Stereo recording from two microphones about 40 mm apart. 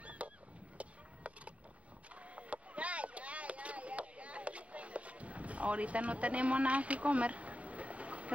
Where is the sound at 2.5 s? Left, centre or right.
Right.